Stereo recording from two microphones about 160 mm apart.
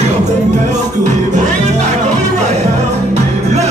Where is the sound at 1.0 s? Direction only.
50° right (ahead or behind).